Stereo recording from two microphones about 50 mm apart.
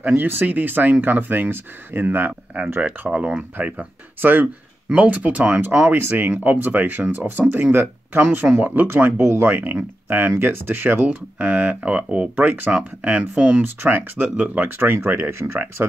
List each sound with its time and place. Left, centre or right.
0.0 s speech: right
3.1 s speech: right
4.2 s speech: right
5.9 s speech: right
9.2 s speech: right
9.5 s speech: right
9.8 s speech: right
11.1 s speech: right
12.4 s speech: right
13.0 s speech: right
13.8 s speech: right
14.8 s speech: right